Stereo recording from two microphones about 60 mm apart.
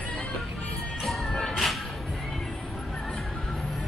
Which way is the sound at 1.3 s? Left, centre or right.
Centre.